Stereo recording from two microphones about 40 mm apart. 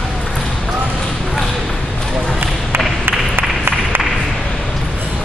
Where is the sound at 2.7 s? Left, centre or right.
Right.